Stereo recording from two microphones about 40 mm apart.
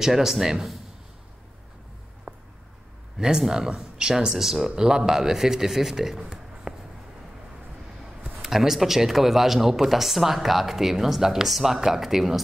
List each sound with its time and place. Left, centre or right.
0.0 s speech: centre
2.3 s a sound: centre
3.2 s speech: centre
4.3 s speech: centre
6.7 s a sound: right
8.4 s speech: centre